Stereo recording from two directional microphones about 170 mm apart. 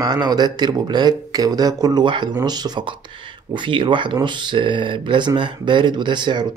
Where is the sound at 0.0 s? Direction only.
25° right (ahead or behind).